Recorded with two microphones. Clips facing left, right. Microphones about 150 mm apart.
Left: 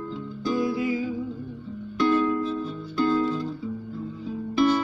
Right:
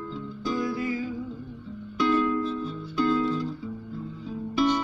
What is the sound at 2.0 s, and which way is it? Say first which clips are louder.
Music: left 2 dB; 5° left (ahead or behind).